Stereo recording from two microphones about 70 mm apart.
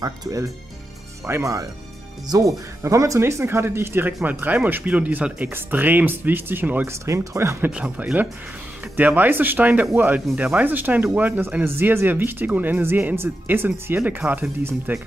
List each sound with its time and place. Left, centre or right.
0.0 s speech: right
1.2 s speech: right
2.2 s speech: right
6.9 s speech: right
7.7 s speech: centre; by 15.0 s right